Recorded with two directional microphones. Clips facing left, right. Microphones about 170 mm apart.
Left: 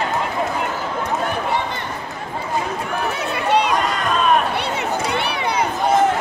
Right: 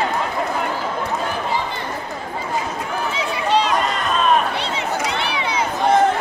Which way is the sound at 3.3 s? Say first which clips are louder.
Even; 60° left (ahead or behind).